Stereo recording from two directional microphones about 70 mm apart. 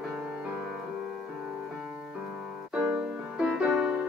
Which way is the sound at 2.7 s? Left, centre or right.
Centre.